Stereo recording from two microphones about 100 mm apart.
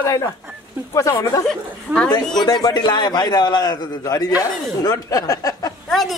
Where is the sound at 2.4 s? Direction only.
45° left (ahead or behind).